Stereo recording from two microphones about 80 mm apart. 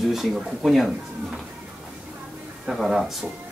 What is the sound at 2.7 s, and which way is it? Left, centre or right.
Speech, centre.